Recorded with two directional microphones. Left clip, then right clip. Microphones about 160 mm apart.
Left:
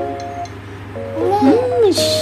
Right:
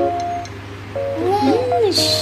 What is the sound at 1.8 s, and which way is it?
Speech, 35° left (ahead or behind).